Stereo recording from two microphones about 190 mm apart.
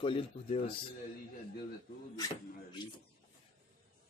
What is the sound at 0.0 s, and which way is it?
Speech, 30° left (ahead or behind).